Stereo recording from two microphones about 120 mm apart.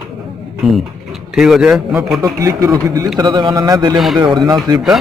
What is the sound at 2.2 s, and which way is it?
A man's voice, 30° right (ahead or behind).